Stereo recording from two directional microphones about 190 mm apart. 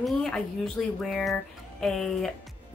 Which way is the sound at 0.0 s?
5° left (ahead or behind).